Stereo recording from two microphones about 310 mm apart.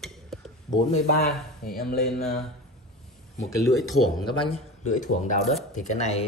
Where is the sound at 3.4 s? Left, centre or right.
Centre.